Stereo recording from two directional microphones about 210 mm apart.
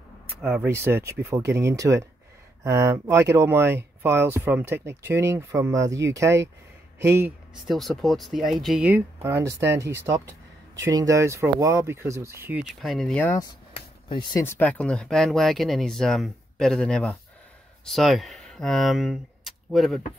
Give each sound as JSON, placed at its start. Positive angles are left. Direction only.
{"t": 0.4, "sound": "speech", "side_deg": -5}
{"t": 7.6, "sound": "speech", "side_deg": 0}
{"t": 14.0, "sound": "speech", "side_deg": 20}
{"t": 14.4, "sound": "speech", "side_deg": 10}